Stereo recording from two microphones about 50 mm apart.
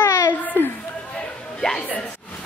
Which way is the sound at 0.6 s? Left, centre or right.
Left.